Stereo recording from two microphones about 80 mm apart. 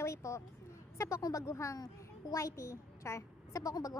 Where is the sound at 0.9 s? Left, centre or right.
Left.